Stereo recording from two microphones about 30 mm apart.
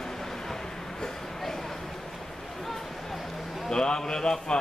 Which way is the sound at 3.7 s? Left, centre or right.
Left.